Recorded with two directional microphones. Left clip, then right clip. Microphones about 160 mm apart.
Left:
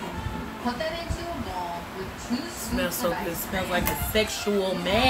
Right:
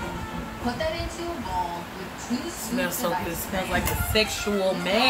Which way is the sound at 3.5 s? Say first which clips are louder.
Even; 10° left (ahead or behind).